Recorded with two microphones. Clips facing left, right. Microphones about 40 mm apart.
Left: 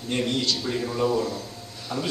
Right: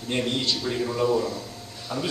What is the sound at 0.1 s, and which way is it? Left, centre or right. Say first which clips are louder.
Speech: even; centre.